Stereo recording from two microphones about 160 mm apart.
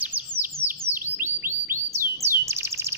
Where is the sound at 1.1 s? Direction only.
15° right (ahead or behind).